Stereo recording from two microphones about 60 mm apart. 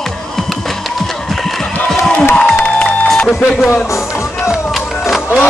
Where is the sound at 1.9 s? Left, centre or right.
Centre.